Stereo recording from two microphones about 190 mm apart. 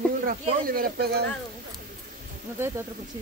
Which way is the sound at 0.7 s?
50° right (ahead or behind).